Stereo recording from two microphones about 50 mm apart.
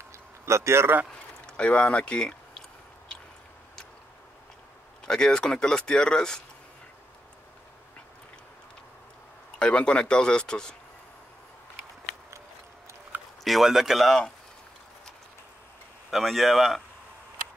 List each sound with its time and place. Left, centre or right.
0.5 s a man's voice: right
1.4 s speech: left
5.0 s speech: centre
9.6 s speech: left
13.4 s speech: centre
16.1 s speech: centre